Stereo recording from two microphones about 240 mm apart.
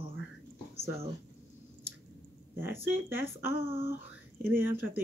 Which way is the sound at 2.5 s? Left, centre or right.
Centre.